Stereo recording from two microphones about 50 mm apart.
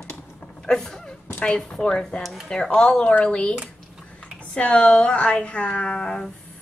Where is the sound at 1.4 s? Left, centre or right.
Left.